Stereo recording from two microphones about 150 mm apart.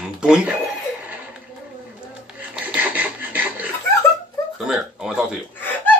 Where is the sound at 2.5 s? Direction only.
10° right (ahead or behind).